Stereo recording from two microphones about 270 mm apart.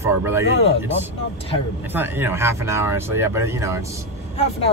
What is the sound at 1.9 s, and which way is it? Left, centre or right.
Speech, centre.